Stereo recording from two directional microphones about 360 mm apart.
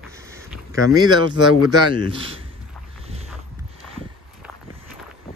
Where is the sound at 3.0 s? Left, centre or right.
Centre.